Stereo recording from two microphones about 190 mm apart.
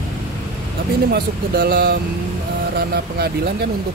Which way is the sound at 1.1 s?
55° right (ahead or behind).